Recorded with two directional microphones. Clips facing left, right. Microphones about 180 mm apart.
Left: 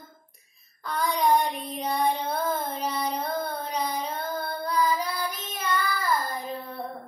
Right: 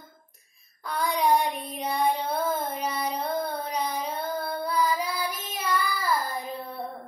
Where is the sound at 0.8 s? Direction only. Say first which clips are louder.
Even; 10° right (ahead or behind).